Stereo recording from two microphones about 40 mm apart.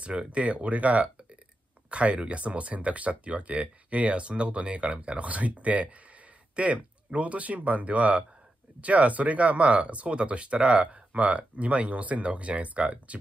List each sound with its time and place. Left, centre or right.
0.0 s speech: right